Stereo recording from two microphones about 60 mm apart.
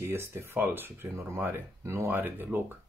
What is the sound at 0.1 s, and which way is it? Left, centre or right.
Speech, right.